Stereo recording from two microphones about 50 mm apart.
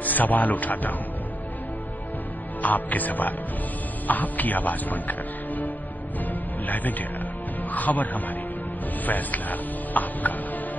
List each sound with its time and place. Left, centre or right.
0.0 s speech: left
2.6 s speech: left